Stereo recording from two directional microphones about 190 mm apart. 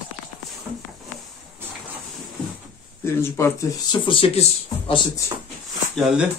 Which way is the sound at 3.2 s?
10° left (ahead or behind).